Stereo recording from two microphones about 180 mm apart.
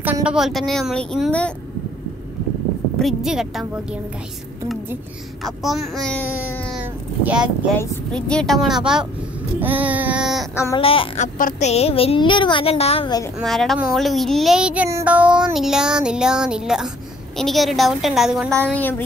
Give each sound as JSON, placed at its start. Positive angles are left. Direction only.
{"t": 0.0, "sound": "speech", "side_deg": -5}
{"t": 3.0, "sound": "speech", "side_deg": 0}
{"t": 5.4, "sound": "speech", "side_deg": 0}
{"t": 6.7, "sound": "speech", "side_deg": -5}
{"t": 7.7, "sound": "a woman's voice", "side_deg": 15}
{"t": 8.1, "sound": "speech", "side_deg": 5}
{"t": 9.6, "sound": "child singing", "side_deg": -10}
{"t": 10.5, "sound": "a woman's voice", "side_deg": 15}
{"t": 10.8, "sound": "speech", "side_deg": 30}
{"t": 11.3, "sound": "a woman's voice", "side_deg": 50}
{"t": 11.7, "sound": "speech", "side_deg": 35}
{"t": 13.4, "sound": "speech", "side_deg": 0}
{"t": 18.6, "sound": "a woman's voice", "side_deg": 10}